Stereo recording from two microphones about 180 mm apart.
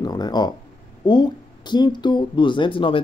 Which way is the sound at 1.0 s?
25° left (ahead or behind).